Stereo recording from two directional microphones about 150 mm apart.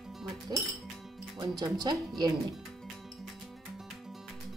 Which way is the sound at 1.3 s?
25° right (ahead or behind).